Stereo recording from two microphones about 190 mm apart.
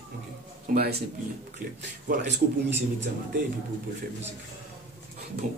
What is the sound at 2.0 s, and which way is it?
Speech, 65° right (ahead or behind).